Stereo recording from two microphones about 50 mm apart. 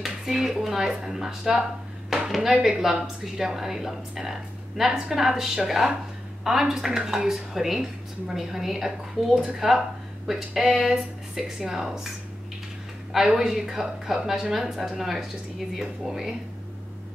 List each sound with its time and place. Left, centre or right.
0.0 s a woman's voice: centre
9.3 s speech: centre
10.2 s speech: centre
13.1 s a woman's voice: centre